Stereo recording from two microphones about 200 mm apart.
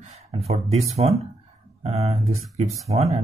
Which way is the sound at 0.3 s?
30° right (ahead or behind).